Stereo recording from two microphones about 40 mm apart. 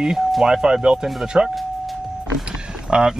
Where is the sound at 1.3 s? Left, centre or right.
Right.